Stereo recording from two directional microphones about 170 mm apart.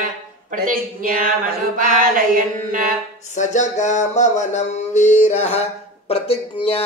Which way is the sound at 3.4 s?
45° left (ahead or behind).